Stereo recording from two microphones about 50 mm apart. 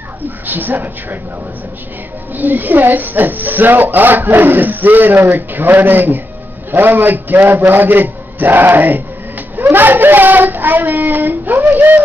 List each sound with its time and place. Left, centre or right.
0.5 s speech: right
2.3 s a man's voice: right